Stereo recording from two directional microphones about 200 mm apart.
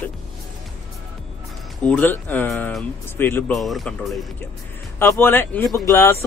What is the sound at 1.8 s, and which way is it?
Speech, 10° left (ahead or behind).